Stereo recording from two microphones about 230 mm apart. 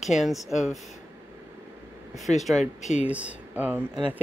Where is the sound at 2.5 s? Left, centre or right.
Left.